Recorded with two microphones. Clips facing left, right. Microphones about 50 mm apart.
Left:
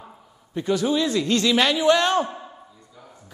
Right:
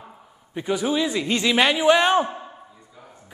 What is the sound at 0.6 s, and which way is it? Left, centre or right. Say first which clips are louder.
A man's voice: left 1 dB; centre.